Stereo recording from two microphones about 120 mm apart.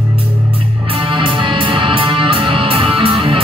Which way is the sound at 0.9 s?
45° right (ahead or behind).